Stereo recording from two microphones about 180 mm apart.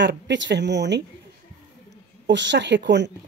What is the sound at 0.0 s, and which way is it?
A woman's voice, 85° right.